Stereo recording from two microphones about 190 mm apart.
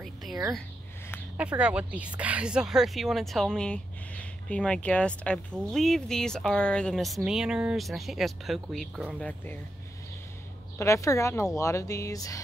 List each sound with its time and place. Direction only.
0.0 s a sound: centre (ahead or behind)
1.3 s speech: 5° right (ahead or behind)
10.8 s a woman's voice: 15° left (ahead or behind)